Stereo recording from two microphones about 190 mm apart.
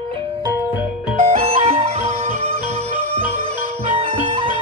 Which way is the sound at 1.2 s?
35° right (ahead or behind).